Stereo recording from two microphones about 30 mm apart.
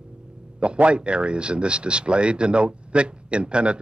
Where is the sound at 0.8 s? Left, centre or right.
Right.